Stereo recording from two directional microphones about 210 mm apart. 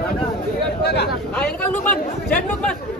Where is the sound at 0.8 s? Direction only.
50° left (ahead or behind).